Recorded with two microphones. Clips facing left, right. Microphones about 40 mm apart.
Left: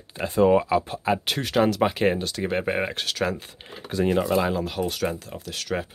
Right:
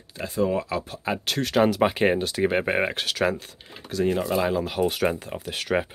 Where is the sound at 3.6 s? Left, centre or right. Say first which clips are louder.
Left 3 dB; centre.